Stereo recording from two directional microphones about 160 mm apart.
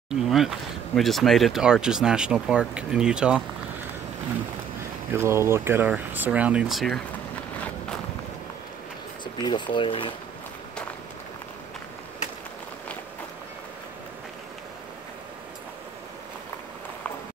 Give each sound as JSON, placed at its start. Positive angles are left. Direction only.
{"t": 0.1, "sound": "speech", "side_deg": 0}
{"t": 5.1, "sound": "speech", "side_deg": -15}
{"t": 9.2, "sound": "speech", "side_deg": 30}